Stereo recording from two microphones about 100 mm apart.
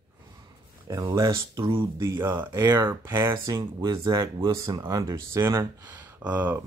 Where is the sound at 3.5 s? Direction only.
40° right (ahead or behind).